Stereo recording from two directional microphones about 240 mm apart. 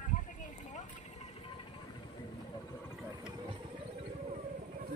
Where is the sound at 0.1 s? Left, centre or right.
Left.